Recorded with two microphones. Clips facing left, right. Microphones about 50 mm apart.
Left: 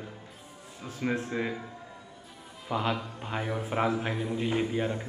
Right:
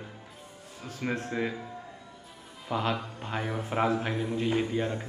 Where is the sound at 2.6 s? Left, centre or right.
Centre.